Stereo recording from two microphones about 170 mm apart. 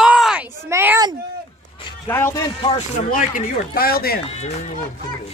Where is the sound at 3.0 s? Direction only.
50° left (ahead or behind).